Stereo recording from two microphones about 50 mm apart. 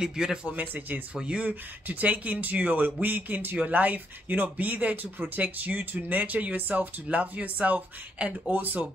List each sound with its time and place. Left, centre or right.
0.0 s speech: centre
0.5 s speech: right
1.1 s speech: right
1.9 s speech: right